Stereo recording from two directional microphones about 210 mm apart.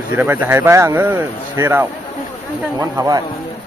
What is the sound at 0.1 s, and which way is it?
Speech, 10° right (ahead or behind).